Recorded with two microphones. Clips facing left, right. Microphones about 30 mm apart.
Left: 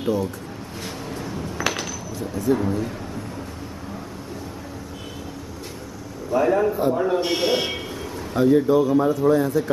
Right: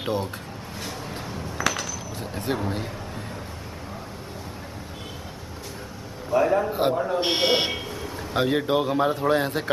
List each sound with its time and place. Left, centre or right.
0.0 s speech: right
1.6 s a sound: left
2.1 s a man's voice: right
6.3 s a man's voice: centre
6.7 s speech: right
7.2 s speech: right
8.3 s speech: right